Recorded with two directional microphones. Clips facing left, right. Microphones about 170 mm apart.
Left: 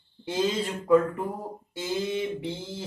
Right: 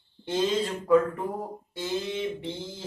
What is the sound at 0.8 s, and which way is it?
A man's voice, centre (ahead or behind).